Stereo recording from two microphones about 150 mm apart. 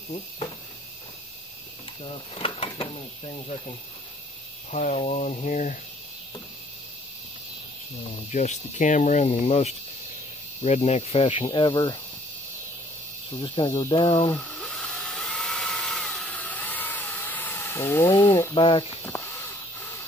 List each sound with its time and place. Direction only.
2.3 s speech: 40° left (ahead or behind)
4.6 s speech: 50° left (ahead or behind)
8.3 s speech: 55° left (ahead or behind); by 12.0 s 30° left (ahead or behind)
13.3 s speech: 35° left (ahead or behind)
14.3 s dental drill: 5° left (ahead or behind)
18.5 s speech: 35° left (ahead or behind)
19.1 s a sound: 15° left (ahead or behind)